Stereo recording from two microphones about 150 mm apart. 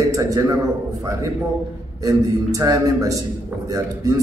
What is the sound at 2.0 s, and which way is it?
A man's voice, 25° right (ahead or behind).